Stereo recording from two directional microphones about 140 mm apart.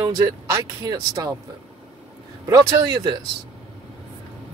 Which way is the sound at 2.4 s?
20° right (ahead or behind).